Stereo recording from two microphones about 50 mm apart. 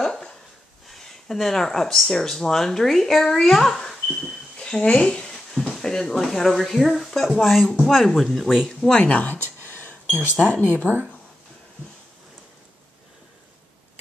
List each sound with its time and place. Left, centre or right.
0.0 s a sound: centre
0.8 s speech: centre
4.6 s a woman's voice: centre
5.3 s speech: centre
8.9 s speech: left
9.6 s a sound: left
10.5 s speech: left